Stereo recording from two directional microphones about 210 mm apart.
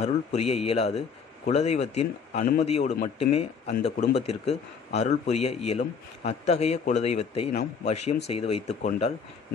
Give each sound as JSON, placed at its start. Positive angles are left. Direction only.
{"t": 0.0, "sound": "speech", "side_deg": 30}